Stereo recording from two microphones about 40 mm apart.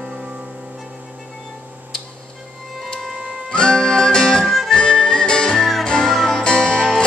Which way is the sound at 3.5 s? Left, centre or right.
Centre.